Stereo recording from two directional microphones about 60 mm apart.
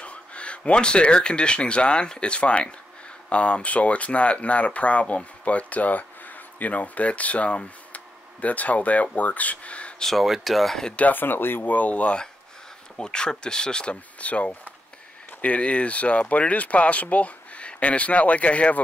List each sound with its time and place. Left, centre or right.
0.0 s speech: centre
10.0 s speech: centre
11.0 s speech: left